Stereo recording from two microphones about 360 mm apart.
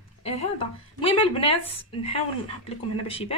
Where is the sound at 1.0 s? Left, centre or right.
Centre.